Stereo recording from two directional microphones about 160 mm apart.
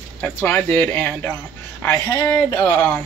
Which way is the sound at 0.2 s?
10° left (ahead or behind).